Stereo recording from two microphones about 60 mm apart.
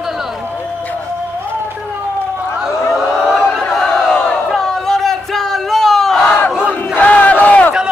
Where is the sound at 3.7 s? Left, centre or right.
Centre.